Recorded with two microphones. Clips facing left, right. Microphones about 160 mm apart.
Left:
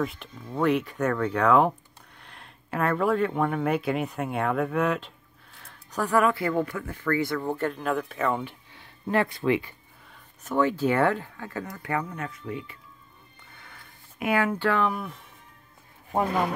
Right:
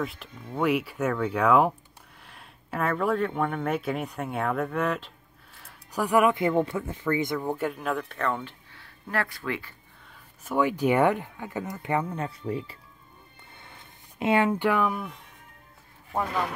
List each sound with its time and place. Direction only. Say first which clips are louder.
0.0 s speech: left 3 dB; centre (ahead or behind); by 9.8 s 20° left (ahead or behind)
10.1 s speech: left 1 dB; 10° right (ahead or behind); by 12.7 s 35° right (ahead or behind)
13.6 s a sound: right 1 dB; 25° right (ahead or behind); by 15.1 s 5° right (ahead or behind)
16.1 s speech: left 3 dB; 20° left (ahead or behind)